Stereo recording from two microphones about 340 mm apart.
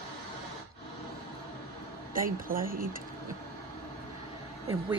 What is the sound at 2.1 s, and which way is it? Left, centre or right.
Speech, right.